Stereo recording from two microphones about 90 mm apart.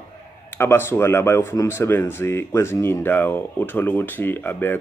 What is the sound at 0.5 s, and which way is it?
Speech, 25° left (ahead or behind).